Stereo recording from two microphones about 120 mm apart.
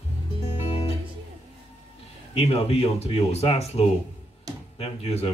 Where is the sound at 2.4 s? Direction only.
60° left (ahead or behind).